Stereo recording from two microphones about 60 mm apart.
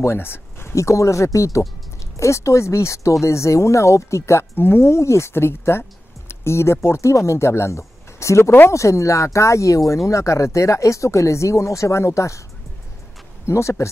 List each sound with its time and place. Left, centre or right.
0.0 s speech: left
0.7 s speech: left
13.5 s speech: left